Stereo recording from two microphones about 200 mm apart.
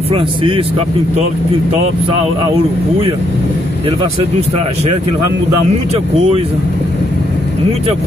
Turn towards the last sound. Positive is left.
turn(degrees=-30)  # may be behind; listen again after turning